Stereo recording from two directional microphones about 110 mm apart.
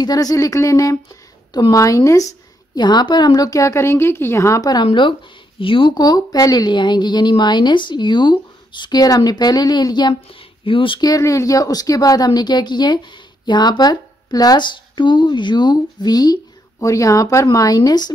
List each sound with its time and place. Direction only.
0.0 s a woman's voice: 35° left (ahead or behind)
4.8 s speech: 50° left (ahead or behind)
5.9 s a woman's voice: 35° left (ahead or behind)
10.6 s speech: 50° left (ahead or behind)
11.1 s a woman's voice: 30° left (ahead or behind)